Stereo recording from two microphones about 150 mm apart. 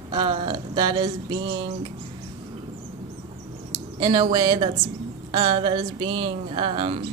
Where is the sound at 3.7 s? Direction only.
30° right (ahead or behind).